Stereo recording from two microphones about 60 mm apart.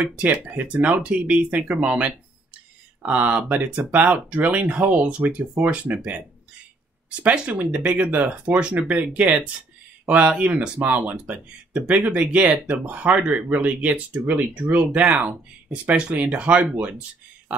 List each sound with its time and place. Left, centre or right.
0.2 s speech: right